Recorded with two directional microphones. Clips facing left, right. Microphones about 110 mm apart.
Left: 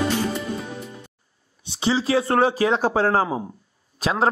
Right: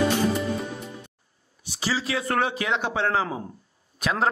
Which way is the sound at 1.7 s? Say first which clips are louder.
Left 7 dB; 25° left (ahead or behind).